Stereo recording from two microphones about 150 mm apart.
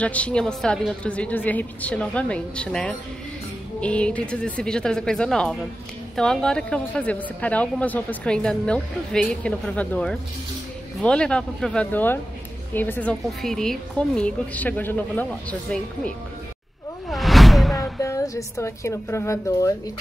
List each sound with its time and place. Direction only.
0.0 s speech: 10° left (ahead or behind)
17.1 s whoosh: centre (ahead or behind)
18.0 s a woman's voice: 20° left (ahead or behind)